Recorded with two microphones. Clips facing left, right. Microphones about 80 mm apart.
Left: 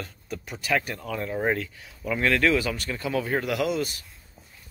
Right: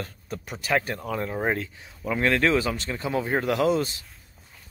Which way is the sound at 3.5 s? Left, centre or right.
Right.